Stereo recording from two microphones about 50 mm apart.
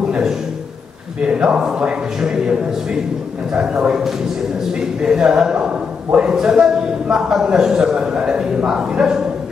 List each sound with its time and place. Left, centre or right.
1.2 s a man's voice: centre
5.0 s a man's voice: centre